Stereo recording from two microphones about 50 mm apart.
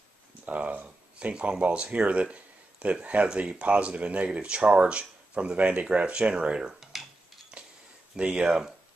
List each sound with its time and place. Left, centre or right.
0.5 s speech: right
0.8 s speech: centre
6.8 s cutlery: centre
8.2 s speech: right